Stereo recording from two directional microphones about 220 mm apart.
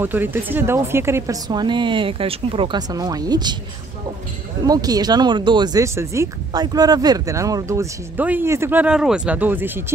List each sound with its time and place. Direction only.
0.0 s speech: 10° right (ahead or behind)
4.6 s speech: 15° right (ahead or behind)